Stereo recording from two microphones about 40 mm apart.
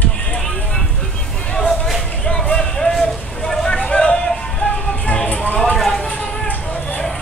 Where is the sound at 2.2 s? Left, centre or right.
Left.